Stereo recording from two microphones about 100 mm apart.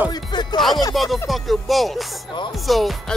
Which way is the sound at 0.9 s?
Centre (ahead or behind).